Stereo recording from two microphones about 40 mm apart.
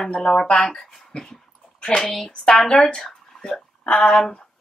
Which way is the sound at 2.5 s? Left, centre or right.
Centre.